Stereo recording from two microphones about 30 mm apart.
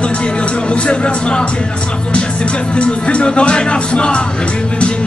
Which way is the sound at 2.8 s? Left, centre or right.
Left.